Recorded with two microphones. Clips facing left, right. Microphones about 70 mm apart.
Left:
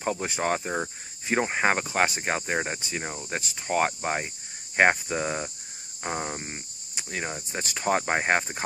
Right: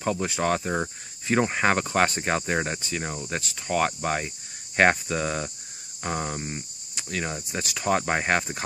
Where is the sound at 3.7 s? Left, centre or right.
Left.